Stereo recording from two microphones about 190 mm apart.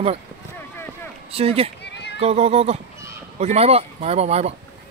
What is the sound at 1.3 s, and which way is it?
Speech, 30° right (ahead or behind).